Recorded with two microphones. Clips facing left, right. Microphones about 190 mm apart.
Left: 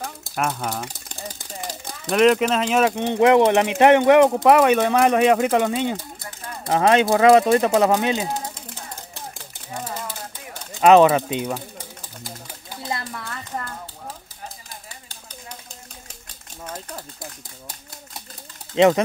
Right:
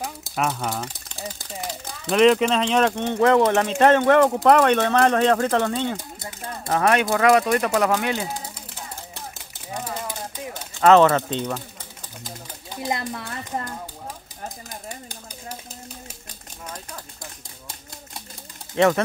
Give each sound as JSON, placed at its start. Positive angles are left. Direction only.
{"t": 0.2, "sound": "speech", "side_deg": 0}
{"t": 3.1, "sound": "speech", "side_deg": 15}
{"t": 10.5, "sound": "speech", "side_deg": 15}
{"t": 12.7, "sound": "a child's voice", "side_deg": -15}
{"t": 16.7, "sound": "speech", "side_deg": 25}
{"t": 18.8, "sound": "speech", "side_deg": 20}